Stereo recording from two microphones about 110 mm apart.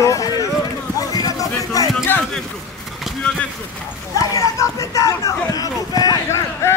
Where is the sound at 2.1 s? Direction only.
15° left (ahead or behind).